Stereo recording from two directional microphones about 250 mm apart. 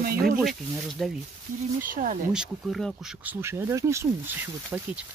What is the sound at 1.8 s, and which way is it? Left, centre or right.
Speech, right.